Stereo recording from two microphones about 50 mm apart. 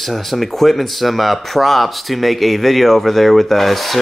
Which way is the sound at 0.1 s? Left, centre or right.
Centre.